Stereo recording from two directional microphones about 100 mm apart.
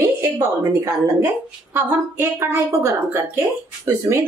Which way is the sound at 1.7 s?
25° right (ahead or behind).